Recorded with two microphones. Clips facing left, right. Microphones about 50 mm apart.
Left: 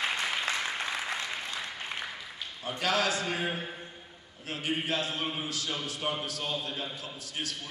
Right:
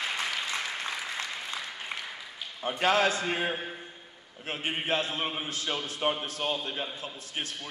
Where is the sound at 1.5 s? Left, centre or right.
Centre.